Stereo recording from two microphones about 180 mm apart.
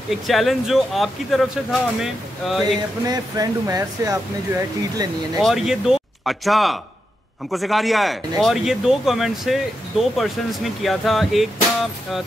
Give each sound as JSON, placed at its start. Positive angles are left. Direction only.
{"t": 0.1, "sound": "speech", "side_deg": 0}
{"t": 3.1, "sound": "speech", "side_deg": -20}
{"t": 5.4, "sound": "speech", "side_deg": 0}